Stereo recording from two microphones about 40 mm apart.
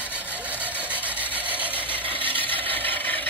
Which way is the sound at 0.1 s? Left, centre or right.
Right.